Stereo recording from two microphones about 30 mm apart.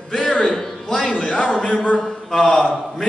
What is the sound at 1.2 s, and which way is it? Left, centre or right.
Speech, left.